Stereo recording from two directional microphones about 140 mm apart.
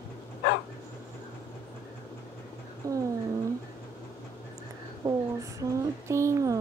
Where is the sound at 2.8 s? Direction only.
25° right (ahead or behind).